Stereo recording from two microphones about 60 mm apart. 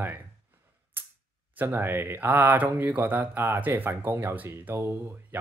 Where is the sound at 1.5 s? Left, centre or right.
Right.